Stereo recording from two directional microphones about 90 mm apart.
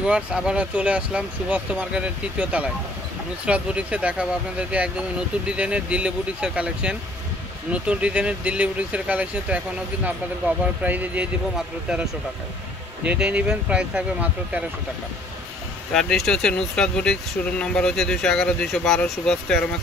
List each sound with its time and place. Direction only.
0.0 s speech: 10° right (ahead or behind)
10.8 s speech: 15° right (ahead or behind)
11.5 s speech: 5° right (ahead or behind)
15.9 s speech: 5° left (ahead or behind)